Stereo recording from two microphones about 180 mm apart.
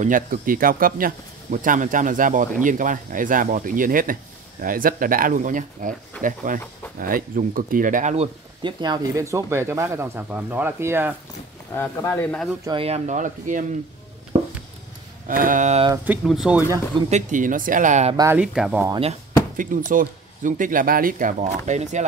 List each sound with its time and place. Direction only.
0.0 s speech: 50° right (ahead or behind)
8.6 s speech: 20° right (ahead or behind)
11.7 s speech: 15° left (ahead or behind)
12.6 s speech: 30° right (ahead or behind)
14.3 s a sound: 35° right (ahead or behind)
15.2 s speech: 50° right (ahead or behind)
15.9 s speech: 10° right (ahead or behind)
17.1 s speech: 45° right (ahead or behind)
18.1 s speech: 15° right (ahead or behind)
18.4 s speech: 5° right (ahead or behind)
19.5 s speech: 50° right (ahead or behind)